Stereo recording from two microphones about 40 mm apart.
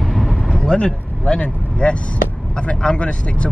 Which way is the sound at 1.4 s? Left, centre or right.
Left.